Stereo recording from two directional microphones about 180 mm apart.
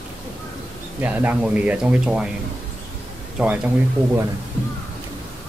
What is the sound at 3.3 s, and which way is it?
Speech, 5° right (ahead or behind).